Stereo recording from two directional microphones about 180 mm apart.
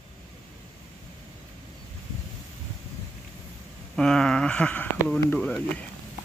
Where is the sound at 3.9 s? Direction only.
5° left (ahead or behind).